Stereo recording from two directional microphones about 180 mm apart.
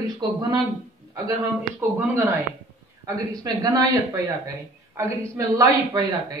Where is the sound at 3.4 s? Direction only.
20° right (ahead or behind).